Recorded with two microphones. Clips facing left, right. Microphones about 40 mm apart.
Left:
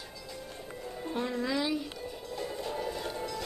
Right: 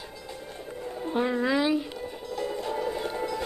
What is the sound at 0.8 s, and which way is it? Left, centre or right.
Music, right.